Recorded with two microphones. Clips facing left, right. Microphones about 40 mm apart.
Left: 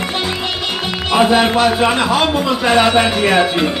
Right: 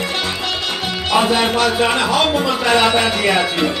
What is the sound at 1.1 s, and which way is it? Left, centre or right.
A man's voice, centre.